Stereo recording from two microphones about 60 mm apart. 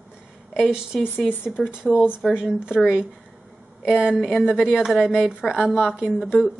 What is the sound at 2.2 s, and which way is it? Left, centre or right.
Speech, centre.